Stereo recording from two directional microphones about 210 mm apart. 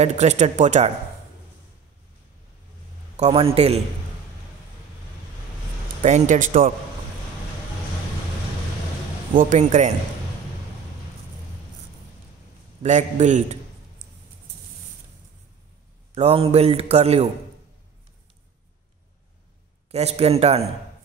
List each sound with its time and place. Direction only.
0.0 s speech: 35° right (ahead or behind)
3.2 s speech: 25° right (ahead or behind)
6.0 s speech: 35° right (ahead or behind)
9.4 s speech: 35° right (ahead or behind)
12.8 s speech: 35° right (ahead or behind)
16.2 s speech: 30° right (ahead or behind)
19.9 s speech: 30° right (ahead or behind)